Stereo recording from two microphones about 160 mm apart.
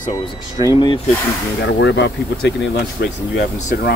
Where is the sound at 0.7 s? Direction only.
25° left (ahead or behind).